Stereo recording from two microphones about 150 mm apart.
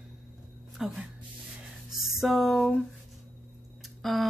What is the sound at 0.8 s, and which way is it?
Speech, 5° right (ahead or behind).